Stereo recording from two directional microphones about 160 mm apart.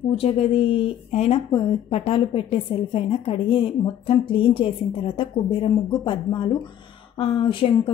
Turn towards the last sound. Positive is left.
turn(degrees=35)  # may be behind; listen again after turning